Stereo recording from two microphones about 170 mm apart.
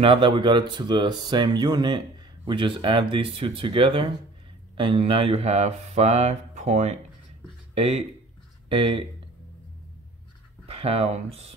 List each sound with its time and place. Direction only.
0.0 s speech: 30° right (ahead or behind)
10.7 s speech: 35° right (ahead or behind)